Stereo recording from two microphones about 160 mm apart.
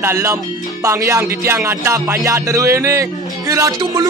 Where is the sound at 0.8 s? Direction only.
20° right (ahead or behind).